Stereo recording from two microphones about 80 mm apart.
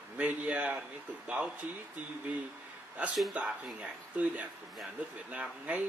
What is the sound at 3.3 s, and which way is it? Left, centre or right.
Speech, centre.